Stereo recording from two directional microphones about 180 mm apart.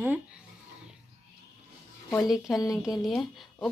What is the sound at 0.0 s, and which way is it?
Speech, 10° right (ahead or behind).